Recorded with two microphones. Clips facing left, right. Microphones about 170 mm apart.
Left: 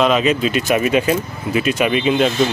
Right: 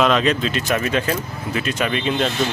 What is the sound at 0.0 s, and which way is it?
Speech, 5° left (ahead or behind).